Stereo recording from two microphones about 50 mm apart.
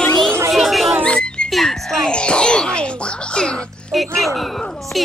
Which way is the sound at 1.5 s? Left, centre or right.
Centre.